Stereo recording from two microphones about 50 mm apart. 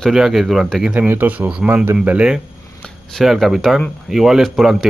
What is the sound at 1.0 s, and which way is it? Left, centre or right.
Speech, right.